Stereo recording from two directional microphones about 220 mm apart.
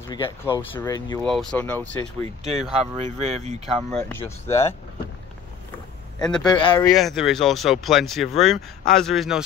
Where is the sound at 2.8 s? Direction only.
30° right (ahead or behind).